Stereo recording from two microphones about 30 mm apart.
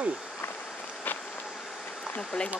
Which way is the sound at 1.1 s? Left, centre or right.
Left.